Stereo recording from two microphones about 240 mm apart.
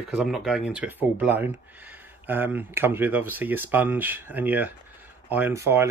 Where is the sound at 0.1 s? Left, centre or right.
Centre.